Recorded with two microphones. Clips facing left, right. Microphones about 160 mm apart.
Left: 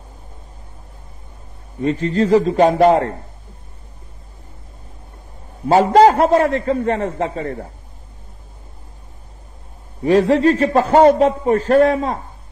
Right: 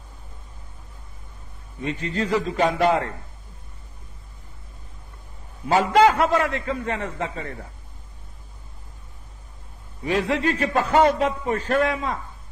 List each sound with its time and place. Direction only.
1.8 s a man's voice: 40° left (ahead or behind)
5.7 s a man's voice: 40° left (ahead or behind)
10.0 s a man's voice: 40° left (ahead or behind)